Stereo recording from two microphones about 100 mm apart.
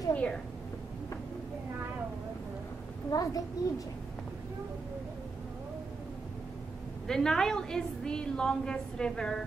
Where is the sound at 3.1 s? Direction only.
35° left (ahead or behind).